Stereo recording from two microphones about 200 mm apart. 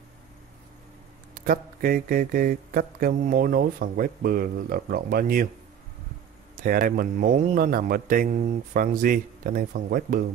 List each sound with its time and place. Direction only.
1.3 s speech: 45° right (ahead or behind)
6.5 s speech: 45° right (ahead or behind)